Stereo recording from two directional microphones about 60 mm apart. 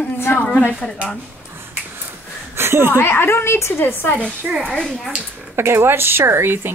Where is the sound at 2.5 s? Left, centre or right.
Right.